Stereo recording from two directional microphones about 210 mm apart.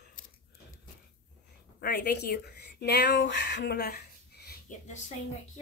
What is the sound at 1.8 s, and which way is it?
Speech, 50° left (ahead or behind).